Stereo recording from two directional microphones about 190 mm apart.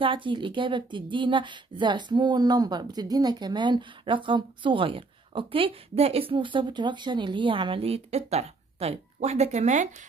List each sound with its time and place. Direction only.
0.0 s a woman's voice: 25° right (ahead or behind)